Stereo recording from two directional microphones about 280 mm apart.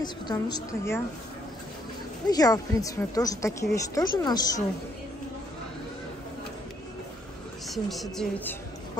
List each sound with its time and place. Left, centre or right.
0.0 s a woman's voice: centre
2.2 s a woman's voice: centre
7.6 s a woman's voice: centre